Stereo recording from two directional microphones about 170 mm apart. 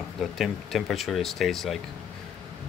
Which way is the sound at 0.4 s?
Centre (ahead or behind).